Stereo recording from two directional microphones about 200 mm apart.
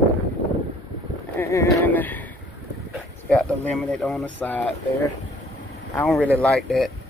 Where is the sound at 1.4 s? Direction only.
10° left (ahead or behind).